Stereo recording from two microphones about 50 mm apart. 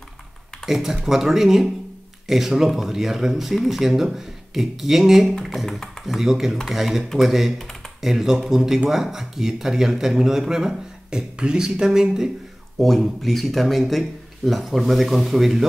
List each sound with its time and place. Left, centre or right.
0.7 s speech: centre
12.7 s speech: centre